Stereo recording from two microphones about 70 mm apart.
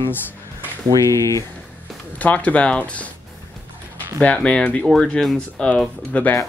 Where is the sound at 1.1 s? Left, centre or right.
Left.